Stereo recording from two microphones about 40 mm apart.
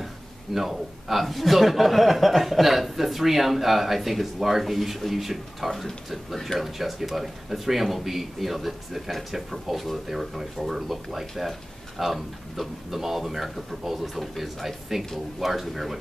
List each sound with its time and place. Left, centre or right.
0.6 s a man's voice: centre
5.8 s a man's voice: centre